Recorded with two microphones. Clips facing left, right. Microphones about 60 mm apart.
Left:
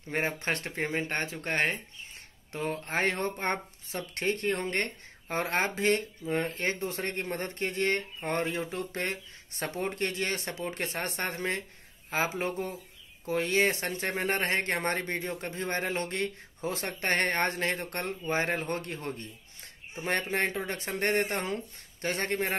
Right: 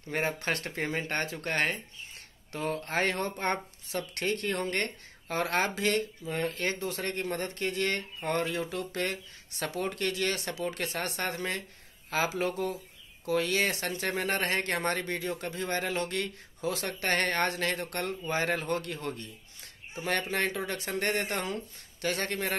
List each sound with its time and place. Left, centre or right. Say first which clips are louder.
0.1 s speech: even; centre